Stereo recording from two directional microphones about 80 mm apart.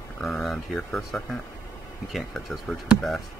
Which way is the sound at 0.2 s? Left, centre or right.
Centre.